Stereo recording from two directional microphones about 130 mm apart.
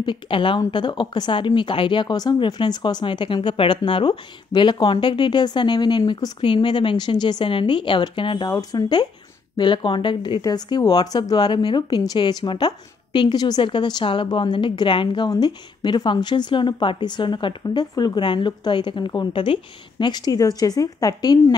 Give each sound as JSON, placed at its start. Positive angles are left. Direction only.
{"t": 0.0, "sound": "speech", "side_deg": 40}